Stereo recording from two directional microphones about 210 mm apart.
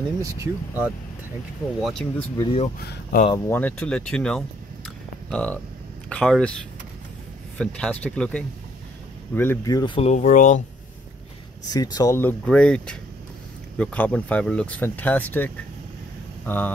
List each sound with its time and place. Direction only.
0.2 s speech: 10° right (ahead or behind)
1.8 s speech: centre (ahead or behind)
2.3 s speech: 25° left (ahead or behind)
2.8 s speech: 45° left (ahead or behind)
3.4 s speech: 10° left (ahead or behind)
7.5 s speech: 5° left (ahead or behind); by 10.6 s 35° left (ahead or behind)
11.7 s speech: 20° left (ahead or behind)